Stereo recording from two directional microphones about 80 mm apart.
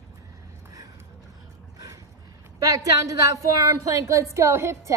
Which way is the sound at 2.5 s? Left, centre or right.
Right.